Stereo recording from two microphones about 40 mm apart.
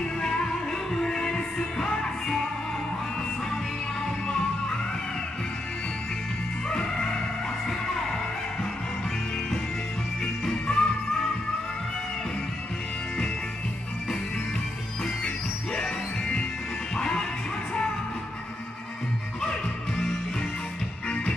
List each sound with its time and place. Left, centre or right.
0.2 s music: centre
6.7 s music: centre
10.2 s music: centre
15.2 s music: left